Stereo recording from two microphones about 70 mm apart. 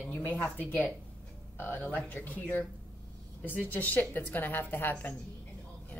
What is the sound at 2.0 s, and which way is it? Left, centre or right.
Speech, left.